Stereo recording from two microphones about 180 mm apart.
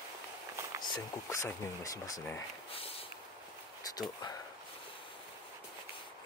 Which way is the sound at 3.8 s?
20° left (ahead or behind).